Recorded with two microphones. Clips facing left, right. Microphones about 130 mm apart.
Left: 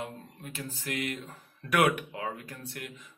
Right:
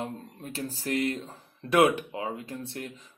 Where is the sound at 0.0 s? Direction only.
35° right (ahead or behind).